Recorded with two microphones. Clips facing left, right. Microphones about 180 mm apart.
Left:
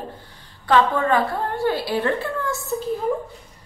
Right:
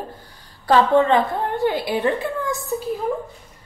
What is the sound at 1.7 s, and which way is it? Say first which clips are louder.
Speech: even; 15° right (ahead or behind).